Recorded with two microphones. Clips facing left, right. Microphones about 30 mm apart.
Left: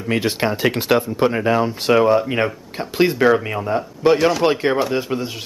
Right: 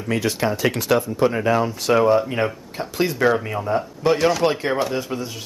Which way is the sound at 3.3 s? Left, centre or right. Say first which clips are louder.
Left 3 dB; centre.